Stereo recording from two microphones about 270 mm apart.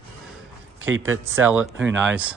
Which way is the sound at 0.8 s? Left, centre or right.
Right.